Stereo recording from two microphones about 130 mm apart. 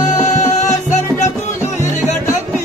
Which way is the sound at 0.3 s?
65° left (ahead or behind).